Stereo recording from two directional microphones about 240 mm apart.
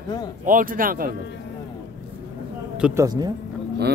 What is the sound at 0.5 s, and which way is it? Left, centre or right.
Speech, right.